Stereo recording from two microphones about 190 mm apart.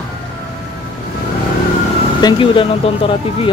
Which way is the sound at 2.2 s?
25° left (ahead or behind).